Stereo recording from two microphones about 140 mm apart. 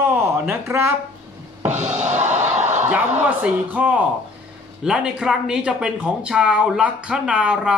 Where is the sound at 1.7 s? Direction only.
55° right (ahead or behind).